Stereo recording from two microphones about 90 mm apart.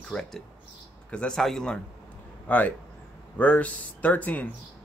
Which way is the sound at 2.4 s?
20° left (ahead or behind).